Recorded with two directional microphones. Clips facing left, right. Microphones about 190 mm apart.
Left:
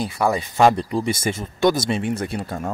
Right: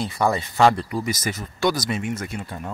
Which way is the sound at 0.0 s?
15° left (ahead or behind).